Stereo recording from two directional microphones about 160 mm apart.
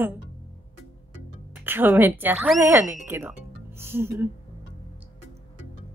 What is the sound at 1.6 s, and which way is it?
Speech, 10° right (ahead or behind).